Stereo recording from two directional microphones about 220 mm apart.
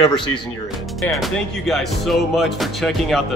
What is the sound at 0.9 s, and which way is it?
Speech, centre (ahead or behind).